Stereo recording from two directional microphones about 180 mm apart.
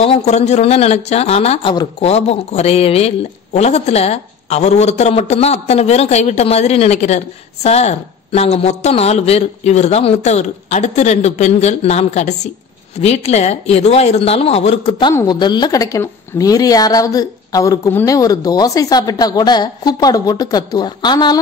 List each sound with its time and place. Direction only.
0.0 s speech: 35° left (ahead or behind)
15.1 s a woman's voice: 25° left (ahead or behind)